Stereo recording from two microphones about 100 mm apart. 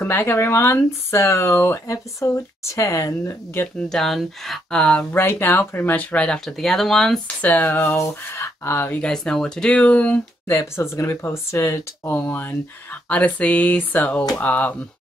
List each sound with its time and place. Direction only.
0.0 s speech: 25° left (ahead or behind)
3.9 s speech: centre (ahead or behind)
5.1 s speech: 20° left (ahead or behind); by 7.2 s 5° left (ahead or behind)
7.4 s speech: 20° left (ahead or behind)
9.0 s speech: 5° left (ahead or behind)
10.5 s speech: 30° left (ahead or behind)
12.1 s speech: 15° left (ahead or behind)